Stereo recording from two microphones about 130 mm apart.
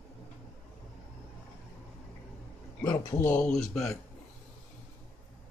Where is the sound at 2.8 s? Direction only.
15° left (ahead or behind).